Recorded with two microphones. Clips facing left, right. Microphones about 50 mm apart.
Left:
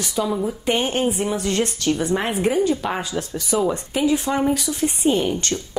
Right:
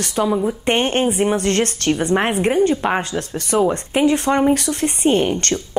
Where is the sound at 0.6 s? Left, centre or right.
Right.